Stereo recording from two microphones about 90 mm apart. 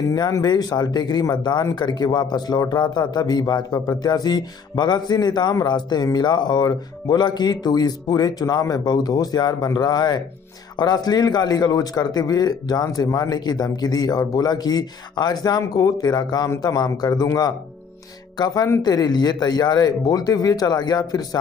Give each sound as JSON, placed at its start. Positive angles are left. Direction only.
{"t": 0.1, "sound": "a man's voice", "side_deg": 45}